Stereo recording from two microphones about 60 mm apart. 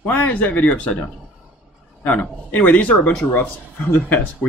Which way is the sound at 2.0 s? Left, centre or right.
Left.